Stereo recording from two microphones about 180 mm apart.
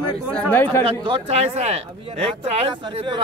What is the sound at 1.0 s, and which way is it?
A man's voice, 30° right (ahead or behind).